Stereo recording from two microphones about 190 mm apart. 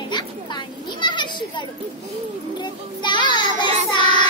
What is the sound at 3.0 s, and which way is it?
Child singing, 25° left (ahead or behind).